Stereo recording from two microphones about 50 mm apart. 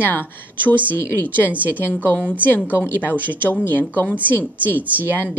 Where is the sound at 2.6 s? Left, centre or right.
Left.